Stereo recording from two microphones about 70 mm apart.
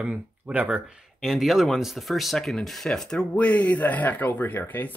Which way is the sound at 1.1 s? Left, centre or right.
Centre.